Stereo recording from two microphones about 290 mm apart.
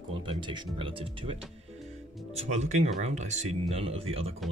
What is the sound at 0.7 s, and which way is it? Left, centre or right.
Speech, centre.